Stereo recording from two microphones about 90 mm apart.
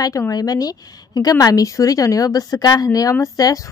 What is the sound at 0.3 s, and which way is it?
A woman's voice, 45° left (ahead or behind).